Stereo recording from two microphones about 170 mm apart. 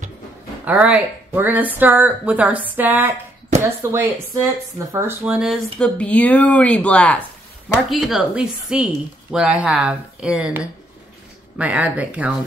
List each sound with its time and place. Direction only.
0.7 s a woman's voice: 10° right (ahead or behind)